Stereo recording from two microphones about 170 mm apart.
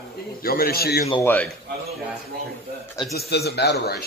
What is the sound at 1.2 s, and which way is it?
Speech, 10° left (ahead or behind).